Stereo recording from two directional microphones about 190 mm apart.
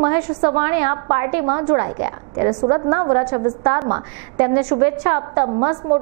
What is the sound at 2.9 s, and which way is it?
A woman's voice, 25° right (ahead or behind).